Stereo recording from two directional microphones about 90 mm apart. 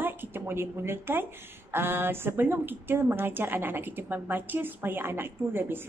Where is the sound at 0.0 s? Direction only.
25° right (ahead or behind).